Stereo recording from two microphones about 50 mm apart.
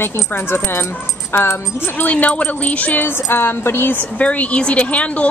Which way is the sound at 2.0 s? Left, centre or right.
Left.